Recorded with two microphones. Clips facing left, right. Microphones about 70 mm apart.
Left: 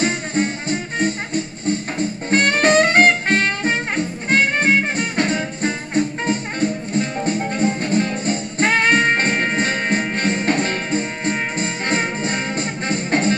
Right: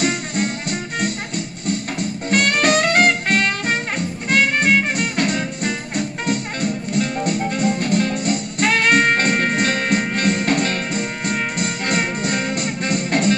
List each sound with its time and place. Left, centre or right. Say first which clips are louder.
0.0 s music: left 1 dB; left